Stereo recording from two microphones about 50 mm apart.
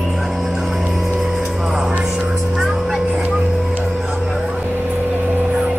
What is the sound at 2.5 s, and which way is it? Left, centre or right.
Vehicle, centre.